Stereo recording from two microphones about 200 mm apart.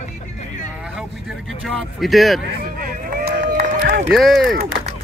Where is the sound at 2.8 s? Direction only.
50° right (ahead or behind).